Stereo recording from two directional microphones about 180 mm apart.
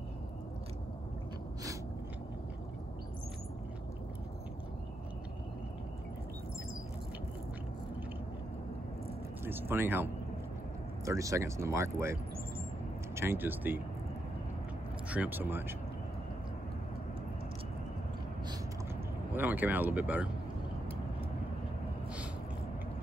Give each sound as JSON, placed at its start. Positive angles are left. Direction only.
{"t": 9.4, "sound": "speech", "side_deg": -10}
{"t": 11.1, "sound": "speech", "side_deg": -15}
{"t": 15.0, "sound": "speech", "side_deg": -10}
{"t": 19.3, "sound": "speech", "side_deg": -10}